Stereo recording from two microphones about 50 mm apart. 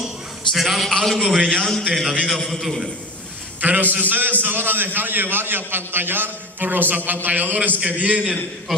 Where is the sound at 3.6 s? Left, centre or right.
Right.